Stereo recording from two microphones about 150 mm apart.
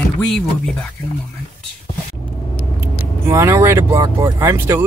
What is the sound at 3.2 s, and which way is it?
Speech, 20° right (ahead or behind).